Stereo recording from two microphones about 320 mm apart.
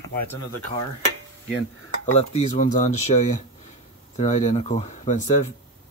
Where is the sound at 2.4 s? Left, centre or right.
Left.